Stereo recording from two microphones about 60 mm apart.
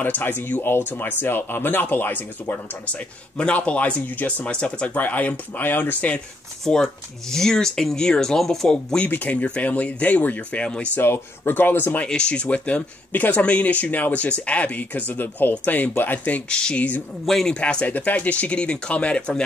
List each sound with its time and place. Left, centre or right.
0.0 s speech: left
3.3 s speech: centre
6.6 s speech: centre
9.0 s speech: left
11.0 s speech: left
12.0 s speech: centre
17.3 s a man's voice: centre
17.6 s speech: centre